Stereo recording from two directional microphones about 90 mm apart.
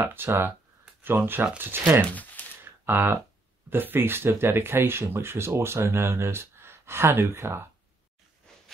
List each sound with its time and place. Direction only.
0.0 s speech: 25° right (ahead or behind)
2.0 s speech: 15° left (ahead or behind)
2.6 s a sound: 25° right (ahead or behind)
3.7 s speech: 25° right (ahead or behind)